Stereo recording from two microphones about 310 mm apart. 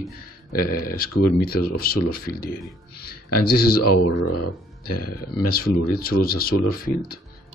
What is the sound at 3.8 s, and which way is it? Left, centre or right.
Speech, left.